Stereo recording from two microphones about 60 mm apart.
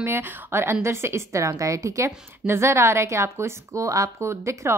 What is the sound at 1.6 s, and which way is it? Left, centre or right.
Speech, right.